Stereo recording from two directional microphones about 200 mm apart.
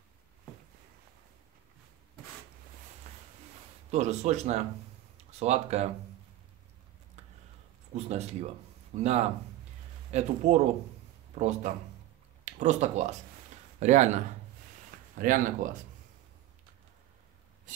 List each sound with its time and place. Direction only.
3.9 s speech: 35° right (ahead or behind)
5.1 s a sound: 35° right (ahead or behind)
7.9 s speech: 35° right (ahead or behind)
10.1 s speech: 35° right (ahead or behind)